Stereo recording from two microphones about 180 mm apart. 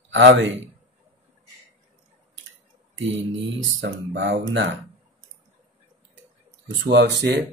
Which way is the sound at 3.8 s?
90° right.